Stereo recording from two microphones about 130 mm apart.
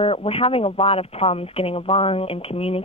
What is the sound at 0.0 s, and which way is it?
Speech, 45° left (ahead or behind).